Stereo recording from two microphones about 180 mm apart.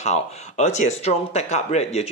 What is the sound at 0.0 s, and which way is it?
Speech, 40° left (ahead or behind).